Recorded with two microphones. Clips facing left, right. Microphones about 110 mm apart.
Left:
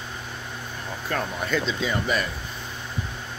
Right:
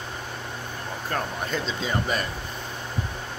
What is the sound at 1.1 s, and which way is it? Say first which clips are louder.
Speech: left 2 dB; 35° right (ahead or behind).